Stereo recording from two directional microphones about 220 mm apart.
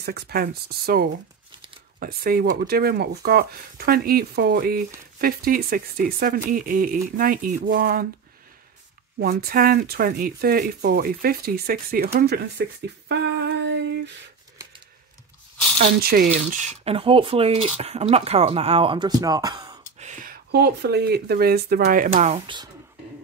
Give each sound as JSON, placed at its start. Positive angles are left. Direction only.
{"t": 0.0, "sound": "speech", "side_deg": -45}
{"t": 9.2, "sound": "speech", "side_deg": -45}
{"t": 13.7, "sound": "a sound", "side_deg": -55}
{"t": 16.0, "sound": "speech", "side_deg": -45}
{"t": 20.0, "sound": "speech", "side_deg": -35}
{"t": 22.1, "sound": "speech", "side_deg": -30}